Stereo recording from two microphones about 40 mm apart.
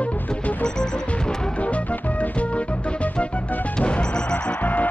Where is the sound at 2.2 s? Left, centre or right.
Left.